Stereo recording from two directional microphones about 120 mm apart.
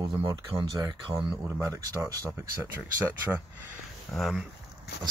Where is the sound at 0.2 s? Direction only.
30° right (ahead or behind).